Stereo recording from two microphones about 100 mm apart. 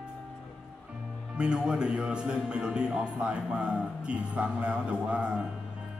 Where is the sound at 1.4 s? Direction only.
10° right (ahead or behind).